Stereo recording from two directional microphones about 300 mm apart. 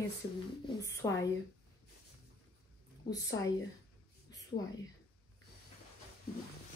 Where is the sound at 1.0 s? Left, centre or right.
Centre.